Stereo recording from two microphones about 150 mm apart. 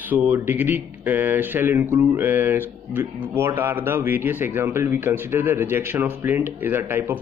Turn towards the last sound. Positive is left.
turn(degrees=-15)  # may be behind; listen again after turning